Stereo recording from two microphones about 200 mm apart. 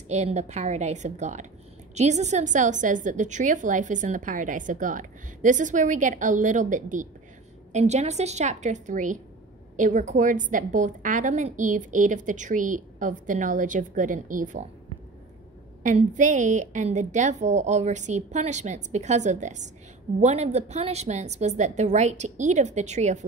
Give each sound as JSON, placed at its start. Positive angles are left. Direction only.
{"t": 0.1, "sound": "a woman's voice", "side_deg": -35}
{"t": 15.8, "sound": "a woman's voice", "side_deg": -40}